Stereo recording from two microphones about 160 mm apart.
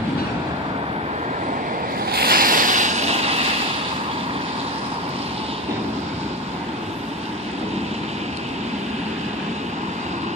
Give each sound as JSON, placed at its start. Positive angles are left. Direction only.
{"t": 2.0, "sound": "ocean", "side_deg": -70}